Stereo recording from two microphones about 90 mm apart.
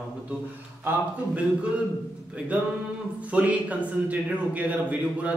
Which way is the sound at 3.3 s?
15° right (ahead or behind).